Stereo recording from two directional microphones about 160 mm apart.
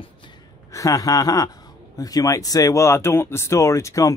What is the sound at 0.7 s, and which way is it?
Speech, 20° left (ahead or behind).